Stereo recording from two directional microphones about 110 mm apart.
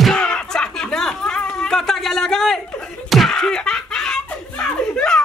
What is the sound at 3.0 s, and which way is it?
Slap, centre (ahead or behind).